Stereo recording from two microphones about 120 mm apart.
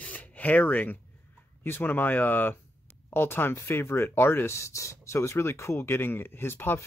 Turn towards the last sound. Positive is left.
turn(degrees=20)  # may be behind; listen again after turning